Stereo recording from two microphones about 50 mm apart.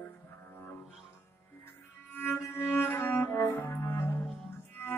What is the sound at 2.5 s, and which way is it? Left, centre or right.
Cello, left.